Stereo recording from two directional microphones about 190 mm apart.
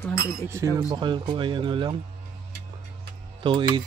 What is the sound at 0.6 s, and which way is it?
Speech, 15° right (ahead or behind).